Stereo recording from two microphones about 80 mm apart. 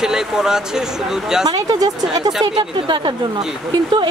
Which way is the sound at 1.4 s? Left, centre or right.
Right.